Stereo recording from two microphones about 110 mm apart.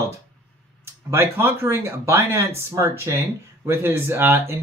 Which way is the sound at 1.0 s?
20° right (ahead or behind).